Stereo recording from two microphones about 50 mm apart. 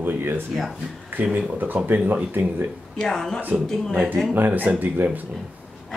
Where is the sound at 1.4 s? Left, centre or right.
Right.